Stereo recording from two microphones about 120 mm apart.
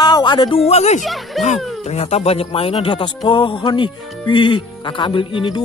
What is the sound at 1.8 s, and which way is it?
Speech, 60° left (ahead or behind).